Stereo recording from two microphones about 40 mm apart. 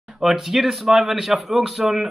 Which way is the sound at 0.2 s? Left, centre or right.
Centre.